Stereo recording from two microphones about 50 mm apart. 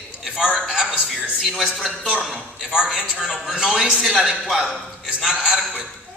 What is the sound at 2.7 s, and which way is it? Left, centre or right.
A man's voice, centre.